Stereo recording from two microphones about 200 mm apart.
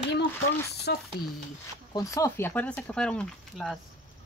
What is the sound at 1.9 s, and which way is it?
Speech, 15° left (ahead or behind).